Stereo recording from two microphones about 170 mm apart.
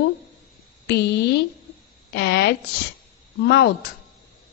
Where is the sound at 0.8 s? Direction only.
75° left (ahead or behind).